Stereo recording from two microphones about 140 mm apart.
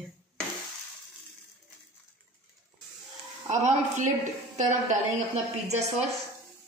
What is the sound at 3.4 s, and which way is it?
Speech, 55° right (ahead or behind).